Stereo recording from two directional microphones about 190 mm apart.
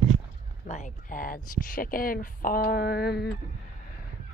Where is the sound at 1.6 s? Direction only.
45° left (ahead or behind).